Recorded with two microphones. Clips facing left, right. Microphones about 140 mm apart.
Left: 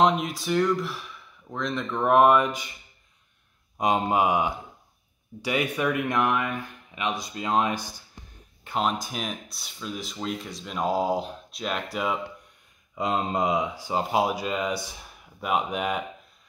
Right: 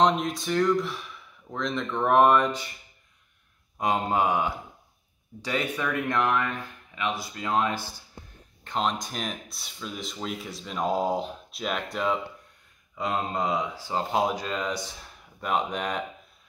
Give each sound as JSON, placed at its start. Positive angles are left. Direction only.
{"t": 0.0, "sound": "speech", "side_deg": 5}
{"t": 3.7, "sound": "speech", "side_deg": 15}
{"t": 8.6, "sound": "speech", "side_deg": 5}
{"t": 12.9, "sound": "speech", "side_deg": 20}